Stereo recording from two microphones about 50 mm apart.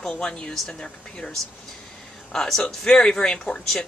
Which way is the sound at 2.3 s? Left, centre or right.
Centre.